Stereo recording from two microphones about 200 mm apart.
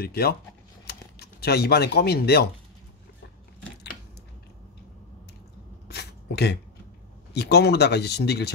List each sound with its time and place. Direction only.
0.0 s speech: 50° left (ahead or behind)
5.9 s a sound: 55° left (ahead or behind)
7.3 s speech: 55° left (ahead or behind)